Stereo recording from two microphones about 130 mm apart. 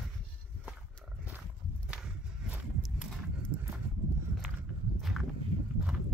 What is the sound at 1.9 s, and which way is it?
Walk, 10° right (ahead or behind).